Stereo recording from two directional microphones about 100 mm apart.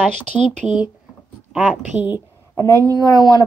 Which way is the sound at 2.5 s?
35° right (ahead or behind).